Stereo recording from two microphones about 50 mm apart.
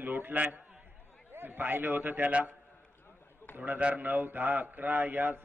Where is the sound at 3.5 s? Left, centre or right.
Right.